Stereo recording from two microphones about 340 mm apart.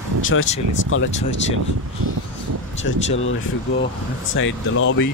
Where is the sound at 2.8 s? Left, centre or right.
Left.